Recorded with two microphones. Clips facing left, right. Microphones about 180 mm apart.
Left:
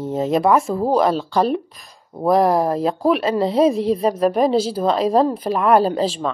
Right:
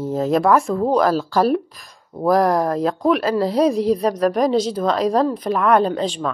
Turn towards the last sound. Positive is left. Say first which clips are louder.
# left 1 dB
turn(degrees=5)  # may be behind; listen again after turning